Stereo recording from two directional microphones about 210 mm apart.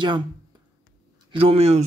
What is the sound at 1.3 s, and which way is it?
Speech, 25° right (ahead or behind).